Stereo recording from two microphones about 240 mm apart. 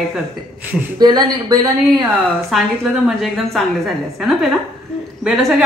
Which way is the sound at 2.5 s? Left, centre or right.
Centre.